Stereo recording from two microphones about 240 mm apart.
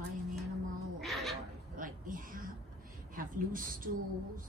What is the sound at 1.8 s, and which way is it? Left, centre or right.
A woman's voice, right.